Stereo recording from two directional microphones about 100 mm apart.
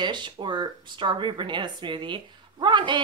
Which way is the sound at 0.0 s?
50° right (ahead or behind).